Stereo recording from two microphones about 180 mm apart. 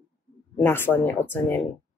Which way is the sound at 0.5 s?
10° left (ahead or behind).